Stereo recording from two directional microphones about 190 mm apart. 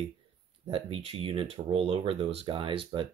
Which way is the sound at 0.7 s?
30° right (ahead or behind).